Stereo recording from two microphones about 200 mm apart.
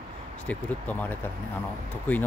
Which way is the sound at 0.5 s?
10° left (ahead or behind).